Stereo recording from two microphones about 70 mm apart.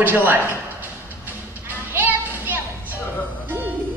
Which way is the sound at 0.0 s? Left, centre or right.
Right.